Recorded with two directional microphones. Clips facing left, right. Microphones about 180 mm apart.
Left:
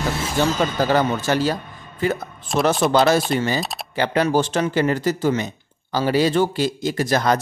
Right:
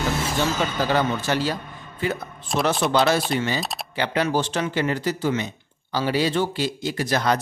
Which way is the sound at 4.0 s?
45° left (ahead or behind).